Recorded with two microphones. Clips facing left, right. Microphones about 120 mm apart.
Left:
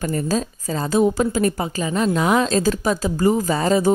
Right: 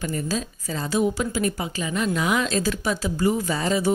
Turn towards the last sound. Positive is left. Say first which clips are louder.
# left 5 dB
turn(degrees=40)  # may be behind; listen again after turning